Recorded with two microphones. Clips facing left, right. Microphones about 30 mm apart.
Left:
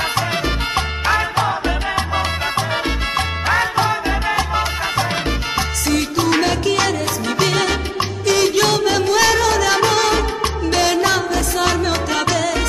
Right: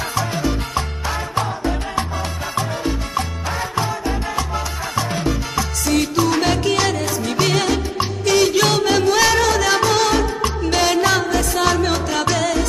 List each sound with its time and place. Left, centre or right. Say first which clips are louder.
0.3 s salsa music: left 2 dB; left
6.4 s music: left 1 dB; centre